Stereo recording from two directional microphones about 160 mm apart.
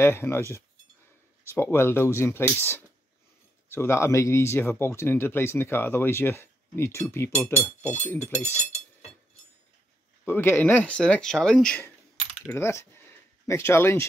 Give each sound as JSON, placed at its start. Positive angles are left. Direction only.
{"t": 0.0, "sound": "speech", "side_deg": 15}
{"t": 1.5, "sound": "speech", "side_deg": 15}
{"t": 10.2, "sound": "speech", "side_deg": 15}
{"t": 12.4, "sound": "coin", "side_deg": 15}
{"t": 13.5, "sound": "speech", "side_deg": 15}